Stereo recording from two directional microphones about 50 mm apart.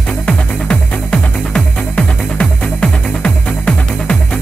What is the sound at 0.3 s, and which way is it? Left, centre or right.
Music, centre.